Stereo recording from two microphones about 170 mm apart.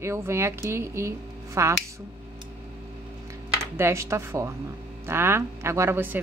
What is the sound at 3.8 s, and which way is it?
A woman's voice, 15° right (ahead or behind).